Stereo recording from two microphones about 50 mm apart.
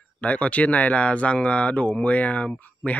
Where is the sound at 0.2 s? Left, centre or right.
Left.